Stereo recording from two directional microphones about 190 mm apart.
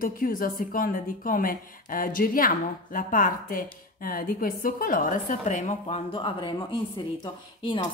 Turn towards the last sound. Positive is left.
turn(degrees=25)  # may be behind; listen again after turning